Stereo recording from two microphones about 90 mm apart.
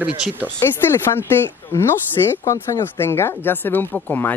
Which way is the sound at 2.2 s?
45° left (ahead or behind).